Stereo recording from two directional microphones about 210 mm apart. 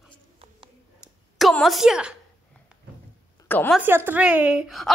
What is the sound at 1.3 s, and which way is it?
Speech, centre (ahead or behind).